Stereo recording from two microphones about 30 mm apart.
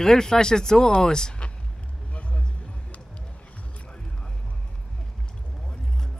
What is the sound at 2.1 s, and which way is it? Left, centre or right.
Vehicle, left.